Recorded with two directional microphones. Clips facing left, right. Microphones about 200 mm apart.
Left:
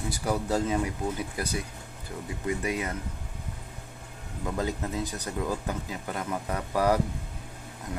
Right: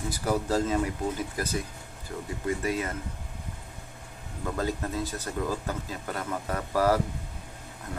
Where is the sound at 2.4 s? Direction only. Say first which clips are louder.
Right 1 dB; 15° left (ahead or behind).